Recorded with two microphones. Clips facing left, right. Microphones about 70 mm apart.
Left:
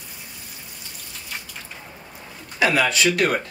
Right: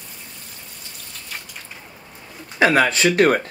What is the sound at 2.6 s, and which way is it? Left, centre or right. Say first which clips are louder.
Speech: right 3 dB; right.